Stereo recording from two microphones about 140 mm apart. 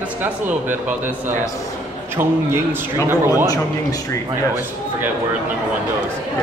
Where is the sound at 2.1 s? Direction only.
15° right (ahead or behind).